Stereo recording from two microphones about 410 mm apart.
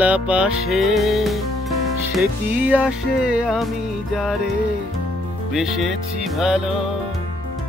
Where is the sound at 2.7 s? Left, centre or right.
Centre.